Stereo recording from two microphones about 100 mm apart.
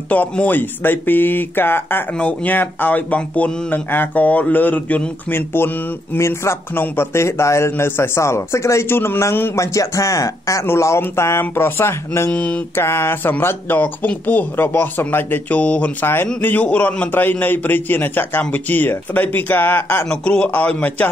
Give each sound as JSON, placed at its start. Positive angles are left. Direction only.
{"t": 0.1, "sound": "a man's voice", "side_deg": 15}
{"t": 12.3, "sound": "speech", "side_deg": 15}
{"t": 12.7, "sound": "a man's voice", "side_deg": 25}